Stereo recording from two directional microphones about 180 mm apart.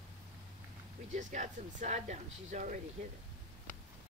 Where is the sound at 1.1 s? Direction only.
45° right (ahead or behind).